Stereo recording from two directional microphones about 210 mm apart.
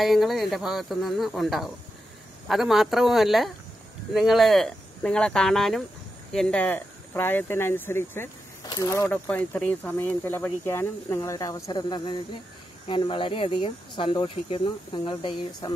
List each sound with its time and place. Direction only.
0.0 s speech: centre (ahead or behind); by 15.7 s 25° left (ahead or behind)